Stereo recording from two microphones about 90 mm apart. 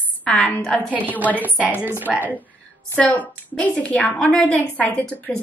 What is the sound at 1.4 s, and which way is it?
Speech, 15° right (ahead or behind).